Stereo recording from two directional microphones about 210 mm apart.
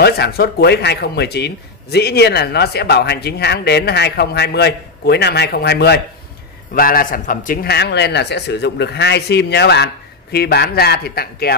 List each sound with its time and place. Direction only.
0.0 s speech: 50° left (ahead or behind)